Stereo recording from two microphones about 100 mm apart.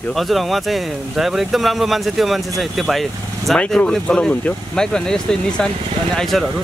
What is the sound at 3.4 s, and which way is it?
Speech, 5° left (ahead or behind).